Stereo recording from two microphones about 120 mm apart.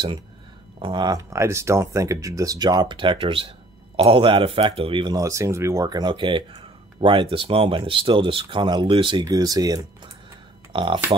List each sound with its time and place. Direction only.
0.7 s speech: 40° right (ahead or behind)
5.1 s speech: 25° right (ahead or behind); by 9.2 s 45° right (ahead or behind)
9.2 s speech: 30° right (ahead or behind)
10.7 s speech: 45° right (ahead or behind)